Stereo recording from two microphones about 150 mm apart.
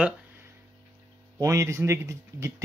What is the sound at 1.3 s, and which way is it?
Speech, 20° right (ahead or behind).